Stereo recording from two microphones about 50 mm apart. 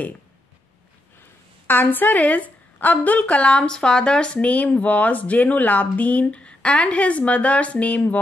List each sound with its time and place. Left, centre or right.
1.7 s a woman's voice: left